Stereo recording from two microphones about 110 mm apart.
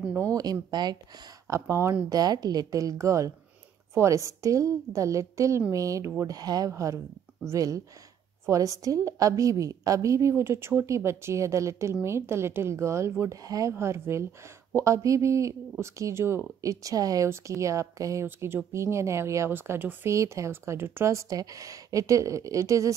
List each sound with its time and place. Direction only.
0.2 s a woman's voice: 35° right (ahead or behind)
1.5 s speech: 25° right (ahead or behind)
2.0 s a woman's voice: 35° right (ahead or behind)